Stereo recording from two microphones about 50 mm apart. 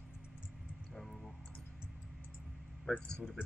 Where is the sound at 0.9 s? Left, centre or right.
Centre.